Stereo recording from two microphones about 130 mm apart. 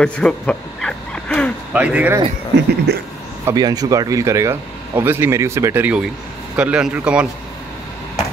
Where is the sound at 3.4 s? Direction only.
30° right (ahead or behind); by 7.2 s 10° right (ahead or behind).